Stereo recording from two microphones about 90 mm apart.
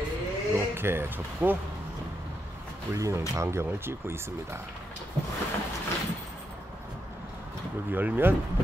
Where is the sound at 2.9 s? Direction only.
35° right (ahead or behind).